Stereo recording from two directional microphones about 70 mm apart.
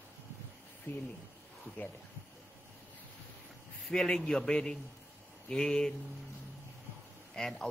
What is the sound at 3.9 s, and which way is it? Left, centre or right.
A man's voice, centre.